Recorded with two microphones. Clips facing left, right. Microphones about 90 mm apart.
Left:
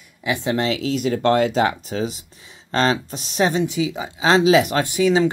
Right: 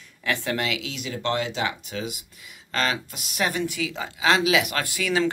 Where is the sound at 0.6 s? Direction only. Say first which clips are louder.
Left 8 dB; 35° left (ahead or behind); by 4.1 s 20° left (ahead or behind).